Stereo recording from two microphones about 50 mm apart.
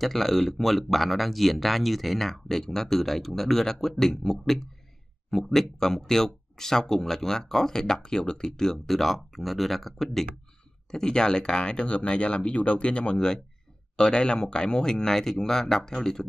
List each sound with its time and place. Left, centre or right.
0.0 s speech: centre
10.9 s speech: centre